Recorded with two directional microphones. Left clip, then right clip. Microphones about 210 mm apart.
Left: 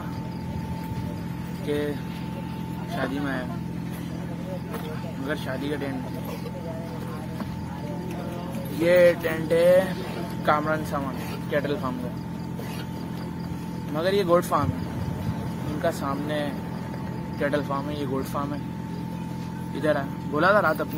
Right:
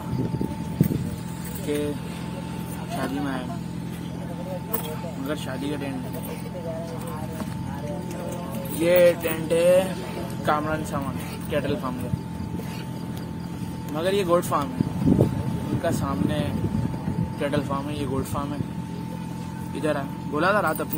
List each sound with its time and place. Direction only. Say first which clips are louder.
8.8 s music: even; 5° right (ahead or behind)
10.4 s speech: left 1 dB; centre (ahead or behind)
13.9 s speech: even; centre (ahead or behind)
15.8 s speech: even; centre (ahead or behind)
19.8 s speech: left 2 dB; centre (ahead or behind)